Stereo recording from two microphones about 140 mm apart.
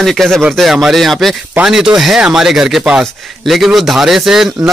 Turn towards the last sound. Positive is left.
turn(degrees=-5)  # may be behind; listen again after turning